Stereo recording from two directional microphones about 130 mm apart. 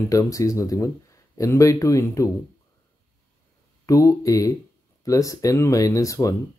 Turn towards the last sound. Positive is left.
turn(degrees=25)  # may be behind; listen again after turning